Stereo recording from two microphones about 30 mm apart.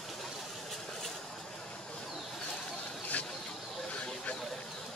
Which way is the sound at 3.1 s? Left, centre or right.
Left.